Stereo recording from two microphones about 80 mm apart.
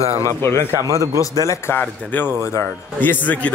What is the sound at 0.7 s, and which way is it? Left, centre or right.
Speech, right.